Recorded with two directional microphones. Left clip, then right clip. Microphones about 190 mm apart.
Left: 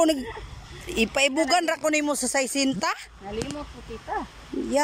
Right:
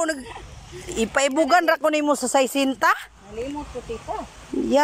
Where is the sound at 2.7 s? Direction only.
5° left (ahead or behind).